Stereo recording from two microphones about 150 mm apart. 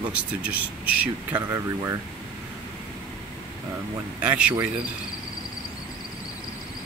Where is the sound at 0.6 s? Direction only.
10° right (ahead or behind).